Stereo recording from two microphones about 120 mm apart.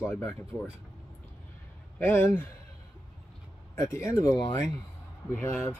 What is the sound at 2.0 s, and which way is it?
Speech, 20° left (ahead or behind).